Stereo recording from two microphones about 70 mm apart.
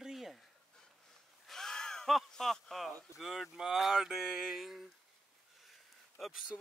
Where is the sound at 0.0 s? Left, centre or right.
Centre.